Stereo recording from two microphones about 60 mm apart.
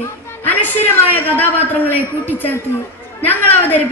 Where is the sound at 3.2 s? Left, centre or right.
Left.